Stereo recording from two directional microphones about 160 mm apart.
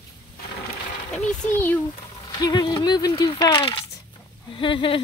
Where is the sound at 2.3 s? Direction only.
25° left (ahead or behind).